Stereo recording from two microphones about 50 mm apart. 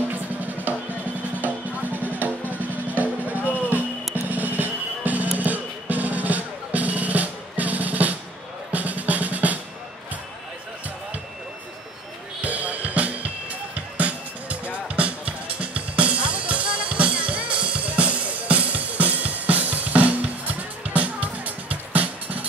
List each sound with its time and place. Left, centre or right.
0.4 s drum: right
1.3 s music: right
8.7 s drum: right
12.4 s music: right